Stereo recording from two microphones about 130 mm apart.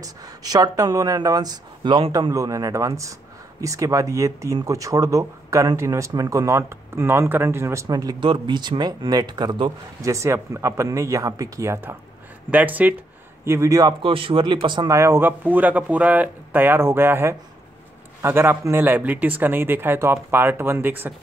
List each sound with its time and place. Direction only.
0.0 s speech: 30° right (ahead or behind)
2.1 s speech: 25° right (ahead or behind)
10.1 s speech: 20° right (ahead or behind)
14.0 s speech: 45° right (ahead or behind)
14.9 s speech: 20° right (ahead or behind)